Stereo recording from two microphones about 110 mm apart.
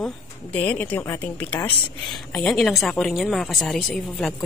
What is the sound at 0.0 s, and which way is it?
Speech, 10° left (ahead or behind).